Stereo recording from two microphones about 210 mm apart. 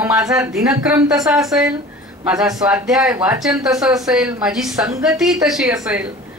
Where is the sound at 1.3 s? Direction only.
Centre (ahead or behind).